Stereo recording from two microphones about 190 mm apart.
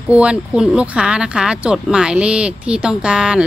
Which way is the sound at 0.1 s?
5° right (ahead or behind).